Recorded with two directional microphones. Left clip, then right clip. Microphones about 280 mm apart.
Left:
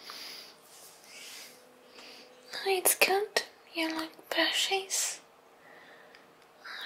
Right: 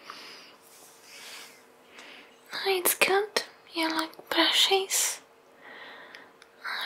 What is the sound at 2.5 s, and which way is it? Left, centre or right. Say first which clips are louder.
Speech: right 2 dB; centre.